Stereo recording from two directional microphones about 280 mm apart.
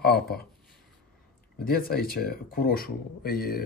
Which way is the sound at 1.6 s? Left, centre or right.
Left.